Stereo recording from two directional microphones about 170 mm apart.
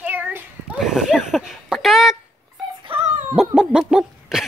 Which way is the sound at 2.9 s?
30° right (ahead or behind).